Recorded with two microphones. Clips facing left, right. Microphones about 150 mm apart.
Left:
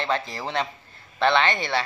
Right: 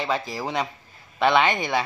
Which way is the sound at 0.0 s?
10° right (ahead or behind).